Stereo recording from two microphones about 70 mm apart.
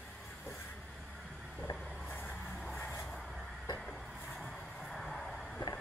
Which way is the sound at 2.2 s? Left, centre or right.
Centre.